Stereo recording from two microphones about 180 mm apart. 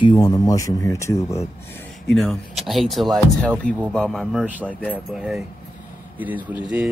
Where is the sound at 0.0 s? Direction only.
25° left (ahead or behind).